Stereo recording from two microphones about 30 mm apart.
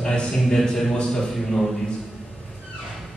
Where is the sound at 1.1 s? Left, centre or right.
Centre.